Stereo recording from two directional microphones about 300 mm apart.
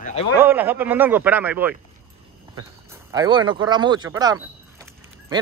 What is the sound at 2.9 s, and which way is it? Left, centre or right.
Speech, centre.